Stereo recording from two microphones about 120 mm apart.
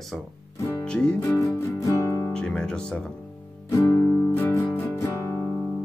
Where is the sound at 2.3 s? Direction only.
5° left (ahead or behind); by 5.4 s 25° left (ahead or behind).